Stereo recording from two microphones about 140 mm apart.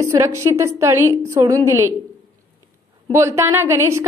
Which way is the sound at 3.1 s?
20° right (ahead or behind).